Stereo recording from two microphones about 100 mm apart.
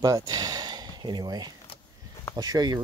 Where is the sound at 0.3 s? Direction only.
40° right (ahead or behind).